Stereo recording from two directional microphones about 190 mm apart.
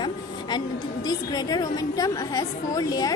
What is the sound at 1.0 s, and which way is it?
A woman's voice, 20° left (ahead or behind).